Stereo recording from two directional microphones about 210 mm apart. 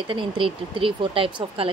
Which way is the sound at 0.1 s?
25° right (ahead or behind).